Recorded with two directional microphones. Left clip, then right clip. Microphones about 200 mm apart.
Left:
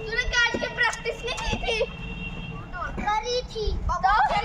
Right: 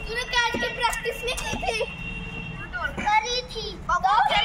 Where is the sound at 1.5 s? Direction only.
50° right (ahead or behind).